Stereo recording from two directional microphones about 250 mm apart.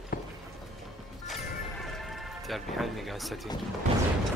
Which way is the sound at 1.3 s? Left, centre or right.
Centre.